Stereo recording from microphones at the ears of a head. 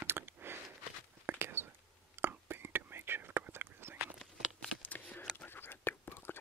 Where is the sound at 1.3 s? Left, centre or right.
Right.